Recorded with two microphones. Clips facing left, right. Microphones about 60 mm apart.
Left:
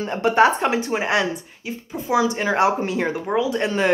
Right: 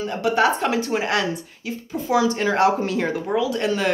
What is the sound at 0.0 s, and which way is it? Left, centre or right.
A woman's voice, left.